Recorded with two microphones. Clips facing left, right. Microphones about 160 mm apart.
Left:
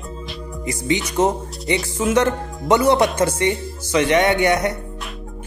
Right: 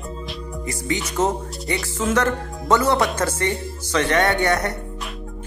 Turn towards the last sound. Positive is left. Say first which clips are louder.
# left 3 dB
turn(degrees=15)  # may be behind; listen again after turning